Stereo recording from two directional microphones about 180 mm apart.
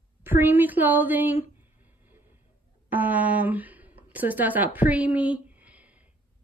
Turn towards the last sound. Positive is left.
turn(degrees=-10)  # may be behind; listen again after turning